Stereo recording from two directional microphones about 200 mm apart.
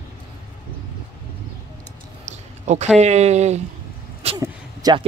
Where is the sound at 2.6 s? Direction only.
35° right (ahead or behind).